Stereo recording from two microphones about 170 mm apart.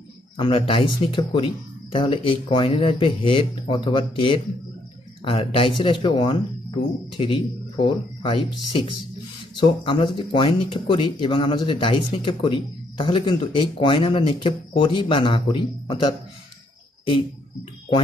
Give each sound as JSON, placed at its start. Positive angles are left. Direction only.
{"t": 0.4, "sound": "speech", "side_deg": 30}